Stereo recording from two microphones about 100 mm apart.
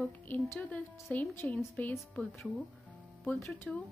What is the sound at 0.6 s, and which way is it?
Speech, 15° left (ahead or behind).